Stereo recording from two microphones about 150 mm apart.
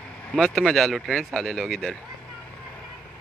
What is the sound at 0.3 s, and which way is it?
Speech, centre (ahead or behind).